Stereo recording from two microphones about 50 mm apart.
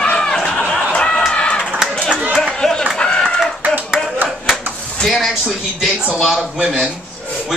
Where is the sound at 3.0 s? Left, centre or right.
Centre.